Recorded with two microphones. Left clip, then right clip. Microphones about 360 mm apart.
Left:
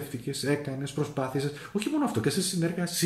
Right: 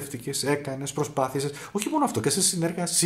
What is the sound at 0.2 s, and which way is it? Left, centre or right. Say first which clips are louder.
Speech: right 3 dB; centre.